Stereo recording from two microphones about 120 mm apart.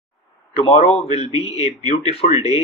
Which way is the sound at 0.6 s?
55° left (ahead or behind).